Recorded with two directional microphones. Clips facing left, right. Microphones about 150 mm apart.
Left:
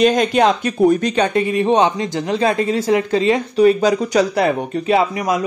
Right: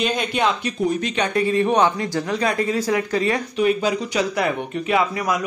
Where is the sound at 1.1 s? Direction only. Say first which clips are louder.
Left 5 dB; 35° left (ahead or behind).